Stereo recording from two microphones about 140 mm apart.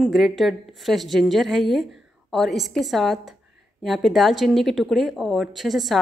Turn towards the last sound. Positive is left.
turn(degrees=0)  # may be behind; listen again after turning